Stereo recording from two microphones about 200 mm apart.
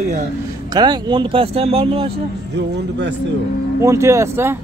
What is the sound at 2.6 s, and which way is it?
Speech, 60° right (ahead or behind).